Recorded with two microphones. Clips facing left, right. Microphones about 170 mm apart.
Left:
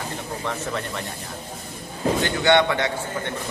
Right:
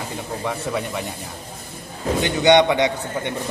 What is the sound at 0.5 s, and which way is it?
Speech, 10° right (ahead or behind).